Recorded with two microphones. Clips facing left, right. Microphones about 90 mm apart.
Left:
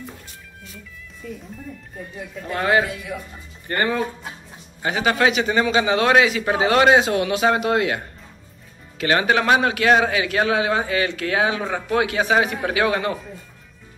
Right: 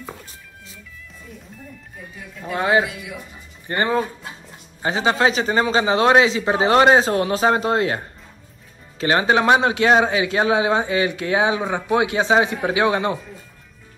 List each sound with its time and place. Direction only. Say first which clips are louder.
2.5 s a man's voice: right 1 dB; 20° right (ahead or behind)